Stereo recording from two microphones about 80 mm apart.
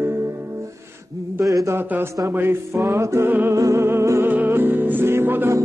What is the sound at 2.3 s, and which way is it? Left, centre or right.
Speech, right.